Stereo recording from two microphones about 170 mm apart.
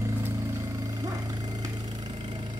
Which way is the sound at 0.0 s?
15° right (ahead or behind).